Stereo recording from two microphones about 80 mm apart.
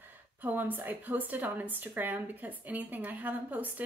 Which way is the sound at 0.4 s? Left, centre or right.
Right.